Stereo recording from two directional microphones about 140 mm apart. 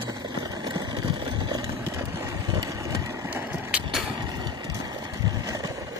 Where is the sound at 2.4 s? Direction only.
25° right (ahead or behind).